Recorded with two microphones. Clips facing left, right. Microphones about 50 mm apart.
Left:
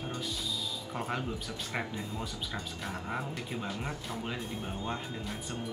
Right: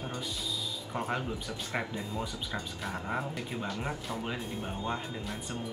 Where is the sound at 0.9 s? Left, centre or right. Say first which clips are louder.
Right 2 dB; centre.